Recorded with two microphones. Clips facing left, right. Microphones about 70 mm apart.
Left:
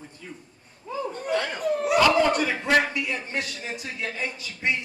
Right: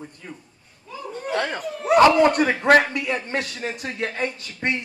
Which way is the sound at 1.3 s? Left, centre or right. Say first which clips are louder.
Left 1 dB; right.